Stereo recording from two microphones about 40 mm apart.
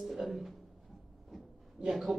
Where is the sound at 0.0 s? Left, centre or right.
Centre.